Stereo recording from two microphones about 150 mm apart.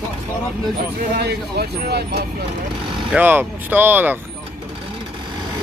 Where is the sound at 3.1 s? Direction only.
15° right (ahead or behind).